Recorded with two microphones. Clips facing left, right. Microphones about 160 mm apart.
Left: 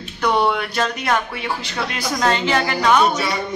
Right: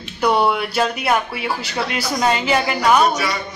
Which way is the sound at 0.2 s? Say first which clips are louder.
Right 1 dB; 5° right (ahead or behind).